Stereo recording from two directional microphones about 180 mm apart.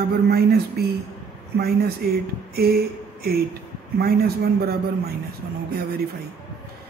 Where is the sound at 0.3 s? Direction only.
60° right (ahead or behind).